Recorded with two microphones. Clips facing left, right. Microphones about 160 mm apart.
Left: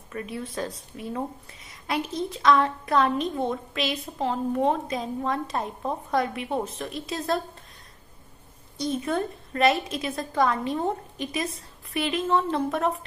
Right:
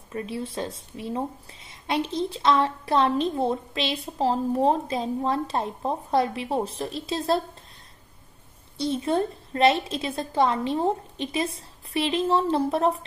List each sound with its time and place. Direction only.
0.1 s speech: 30° right (ahead or behind)
8.7 s speech: 30° right (ahead or behind)